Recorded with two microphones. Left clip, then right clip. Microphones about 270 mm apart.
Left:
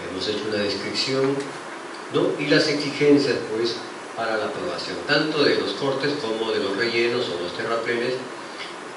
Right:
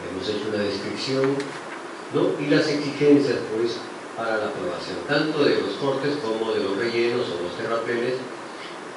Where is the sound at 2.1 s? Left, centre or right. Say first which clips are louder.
Left 1 dB; centre.